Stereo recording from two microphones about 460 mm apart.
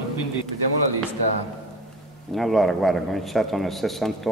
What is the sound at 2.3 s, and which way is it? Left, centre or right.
A man's voice, centre.